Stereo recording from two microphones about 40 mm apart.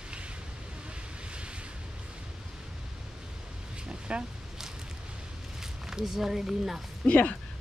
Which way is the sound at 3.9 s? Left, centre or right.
Right.